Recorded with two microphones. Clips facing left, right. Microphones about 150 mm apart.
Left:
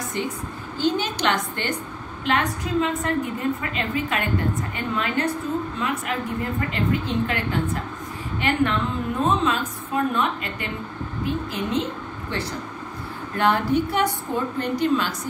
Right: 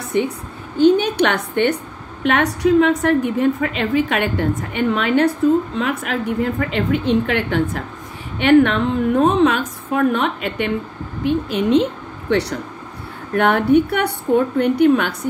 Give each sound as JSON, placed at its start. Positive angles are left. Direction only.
{"t": 0.7, "sound": "a woman's voice", "side_deg": -60}
{"t": 11.2, "sound": "speech", "side_deg": -90}
{"t": 12.3, "sound": "a woman's voice", "side_deg": -70}